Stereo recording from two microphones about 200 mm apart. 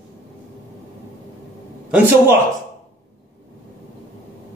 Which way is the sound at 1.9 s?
10° right (ahead or behind).